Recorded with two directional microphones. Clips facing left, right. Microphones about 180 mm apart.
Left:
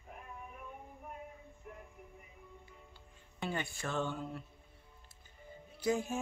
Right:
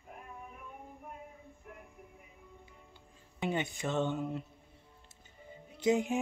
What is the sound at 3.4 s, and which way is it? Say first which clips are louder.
Speech: right 5 dB; 20° right (ahead or behind).